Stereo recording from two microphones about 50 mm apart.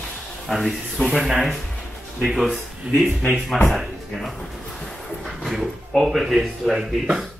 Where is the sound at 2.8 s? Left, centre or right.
Right.